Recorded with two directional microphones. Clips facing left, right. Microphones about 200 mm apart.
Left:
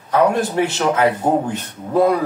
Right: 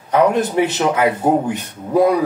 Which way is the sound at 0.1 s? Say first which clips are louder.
Right 1 dB; 20° right (ahead or behind).